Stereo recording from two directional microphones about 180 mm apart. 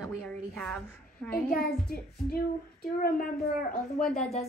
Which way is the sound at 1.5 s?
60° left (ahead or behind).